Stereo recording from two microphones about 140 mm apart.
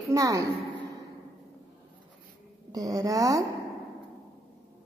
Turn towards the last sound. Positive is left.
turn(degrees=-25)  # may be behind; listen again after turning